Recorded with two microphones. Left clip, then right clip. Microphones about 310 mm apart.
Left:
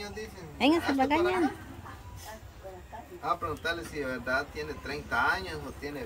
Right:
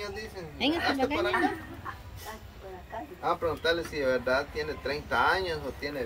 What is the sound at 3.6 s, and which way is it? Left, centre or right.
Speech, centre.